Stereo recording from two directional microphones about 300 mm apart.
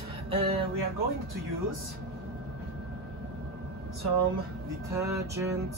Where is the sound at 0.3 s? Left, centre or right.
Centre.